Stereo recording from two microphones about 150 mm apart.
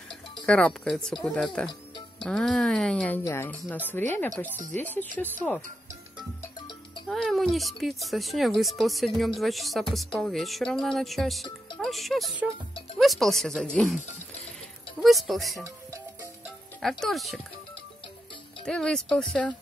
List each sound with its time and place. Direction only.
0.5 s speech: 5° left (ahead or behind)
1.7 s music: 30° left (ahead or behind)
2.2 s speech: 5° left (ahead or behind)
7.1 s speech: centre (ahead or behind)
15.0 s speech: centre (ahead or behind)
16.8 s speech: centre (ahead or behind)
18.7 s speech: 5° left (ahead or behind)